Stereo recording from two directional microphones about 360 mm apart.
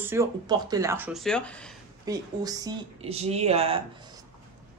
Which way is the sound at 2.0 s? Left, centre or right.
Centre.